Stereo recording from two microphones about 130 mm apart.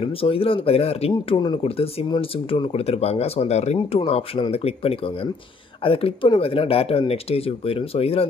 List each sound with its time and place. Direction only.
0.0 s speech: 45° left (ahead or behind)